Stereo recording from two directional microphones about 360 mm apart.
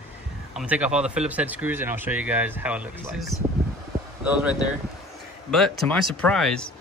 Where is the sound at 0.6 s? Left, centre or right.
Centre.